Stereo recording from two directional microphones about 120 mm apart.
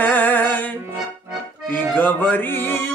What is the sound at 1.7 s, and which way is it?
Music, 15° left (ahead or behind).